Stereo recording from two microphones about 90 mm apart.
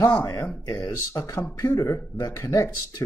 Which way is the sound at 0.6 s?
45° left (ahead or behind).